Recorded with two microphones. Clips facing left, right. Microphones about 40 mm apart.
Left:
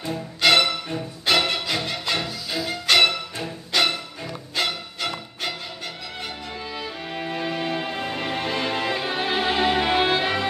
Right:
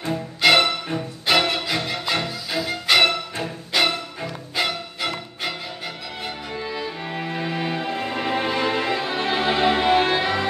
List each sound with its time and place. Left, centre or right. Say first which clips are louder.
0.1 s music: right 2 dB; centre
0.6 s music: right 2 dB; right
1.3 s music: right 2 dB; centre
2.5 s violin: right 1 dB; centre
3.1 s music: right 3 dB; right
3.7 s music: right 1 dB; centre
8.1 s music: right 5 dB; centre